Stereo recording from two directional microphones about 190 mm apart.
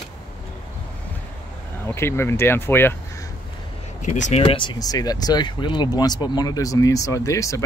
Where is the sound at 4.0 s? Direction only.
40° left (ahead or behind).